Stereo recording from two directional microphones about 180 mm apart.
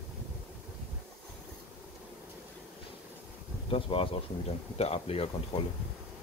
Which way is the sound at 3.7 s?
30° left (ahead or behind).